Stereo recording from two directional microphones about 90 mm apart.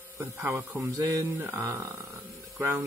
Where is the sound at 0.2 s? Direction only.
30° right (ahead or behind).